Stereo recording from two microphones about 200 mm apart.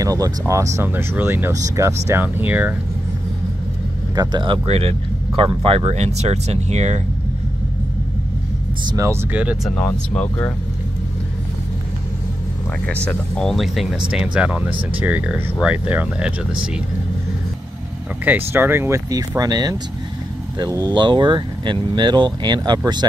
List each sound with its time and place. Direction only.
0.0 s speech: 15° right (ahead or behind)
4.1 s speech: 20° right (ahead or behind)
8.9 s speech: 15° right (ahead or behind)
9.8 s speech: 10° left (ahead or behind)
12.8 s speech: 5° left (ahead or behind)
18.5 s speech: 10° right (ahead or behind)